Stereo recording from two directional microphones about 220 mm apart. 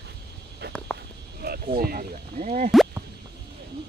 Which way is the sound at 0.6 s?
45° right (ahead or behind).